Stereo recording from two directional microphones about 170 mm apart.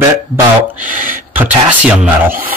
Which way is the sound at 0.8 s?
50° right (ahead or behind).